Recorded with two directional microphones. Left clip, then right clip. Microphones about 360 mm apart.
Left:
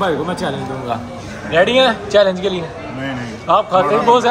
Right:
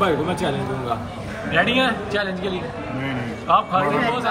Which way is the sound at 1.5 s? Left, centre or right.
Centre.